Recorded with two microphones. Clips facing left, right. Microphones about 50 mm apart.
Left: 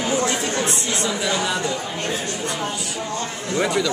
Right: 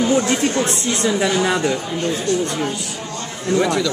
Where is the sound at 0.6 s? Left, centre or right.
Right.